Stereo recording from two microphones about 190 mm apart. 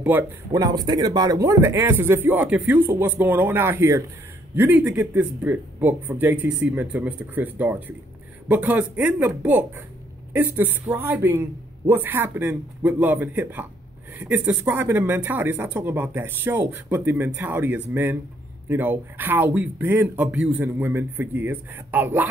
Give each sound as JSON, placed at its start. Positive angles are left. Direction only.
{"t": 0.0, "sound": "speech", "side_deg": -15}